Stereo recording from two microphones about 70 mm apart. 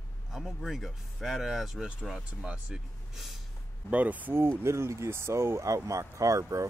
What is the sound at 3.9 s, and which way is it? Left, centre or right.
Speech, right.